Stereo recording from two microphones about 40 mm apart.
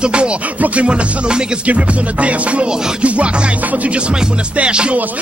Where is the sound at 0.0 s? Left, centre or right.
Right.